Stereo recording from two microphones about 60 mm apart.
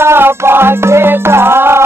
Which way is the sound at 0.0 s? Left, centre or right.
Right.